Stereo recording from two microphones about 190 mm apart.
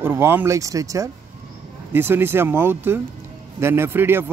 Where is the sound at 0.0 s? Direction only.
10° right (ahead or behind).